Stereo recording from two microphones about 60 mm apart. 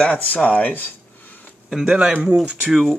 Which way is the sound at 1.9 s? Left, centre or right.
Centre.